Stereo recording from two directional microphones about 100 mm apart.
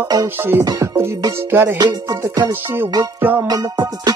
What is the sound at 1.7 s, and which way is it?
Music, 40° right (ahead or behind).